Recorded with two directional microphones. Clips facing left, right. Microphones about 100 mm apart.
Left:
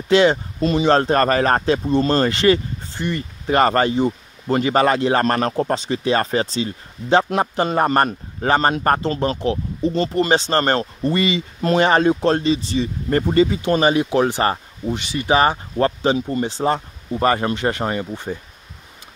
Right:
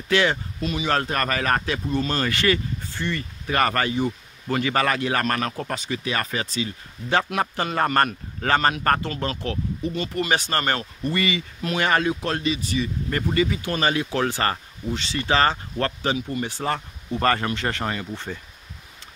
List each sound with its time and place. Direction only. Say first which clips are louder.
0.1 s speech: left 7 dB; 20° left (ahead or behind)
0.6 s speech: left 9 dB; 35° left (ahead or behind)
16.2 s speech: left 6 dB; 30° left (ahead or behind); by 18.4 s 15° left (ahead or behind)